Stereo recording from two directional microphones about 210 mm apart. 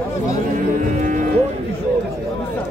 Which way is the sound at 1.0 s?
40° right (ahead or behind).